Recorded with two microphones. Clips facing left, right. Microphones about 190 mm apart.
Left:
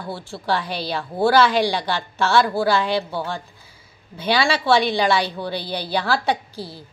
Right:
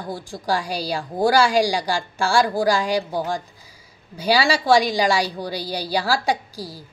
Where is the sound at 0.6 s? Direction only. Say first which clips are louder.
Right 1 dB; 40° right (ahead or behind).